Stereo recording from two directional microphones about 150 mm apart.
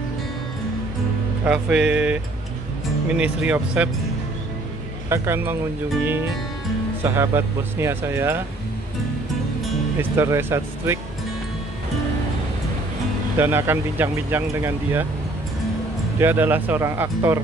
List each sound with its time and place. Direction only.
1.4 s speech: 5° right (ahead or behind)
5.1 s speech: 15° right (ahead or behind)
7.0 s speech: 15° right (ahead or behind)
9.9 s speech: 15° right (ahead or behind)
13.4 s speech: 15° right (ahead or behind)
16.2 s speech: 15° right (ahead or behind)